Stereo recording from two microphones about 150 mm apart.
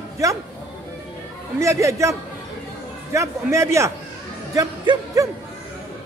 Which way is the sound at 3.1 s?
20° right (ahead or behind).